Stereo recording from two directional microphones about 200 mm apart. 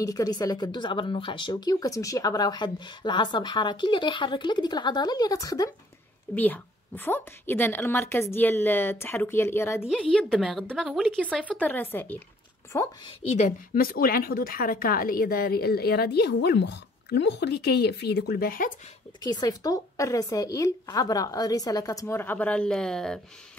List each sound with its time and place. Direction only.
0.0 s a woman's voice: 20° left (ahead or behind); by 11.6 s 5° right (ahead or behind)
11.6 s a woman's voice: 10° left (ahead or behind)
13.3 s a woman's voice: 35° left (ahead or behind)
19.2 s a woman's voice: 20° left (ahead or behind); by 23.2 s 5° left (ahead or behind)